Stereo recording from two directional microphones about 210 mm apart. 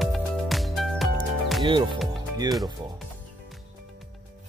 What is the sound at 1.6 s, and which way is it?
Speech, 25° right (ahead or behind).